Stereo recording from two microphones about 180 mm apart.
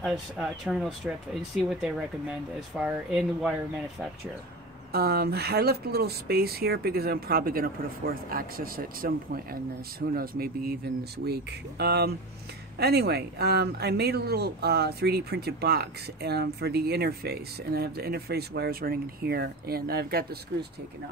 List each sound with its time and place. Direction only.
0.0 s speech: 5° right (ahead or behind)
4.9 s speech: 60° right (ahead or behind)